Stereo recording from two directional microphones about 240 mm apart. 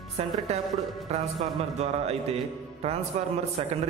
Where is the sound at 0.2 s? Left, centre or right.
Right.